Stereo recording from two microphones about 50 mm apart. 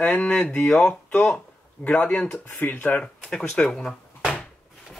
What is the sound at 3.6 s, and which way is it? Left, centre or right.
Speech, centre.